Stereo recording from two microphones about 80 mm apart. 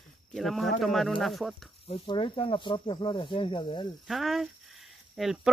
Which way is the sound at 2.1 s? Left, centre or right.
Left.